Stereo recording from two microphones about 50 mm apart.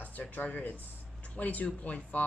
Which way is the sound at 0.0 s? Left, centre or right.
Left.